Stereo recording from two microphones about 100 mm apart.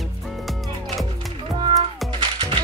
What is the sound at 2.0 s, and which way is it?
Music, 55° right (ahead or behind).